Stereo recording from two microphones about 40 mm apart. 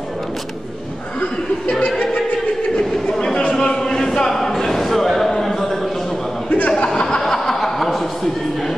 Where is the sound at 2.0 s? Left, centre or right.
Left.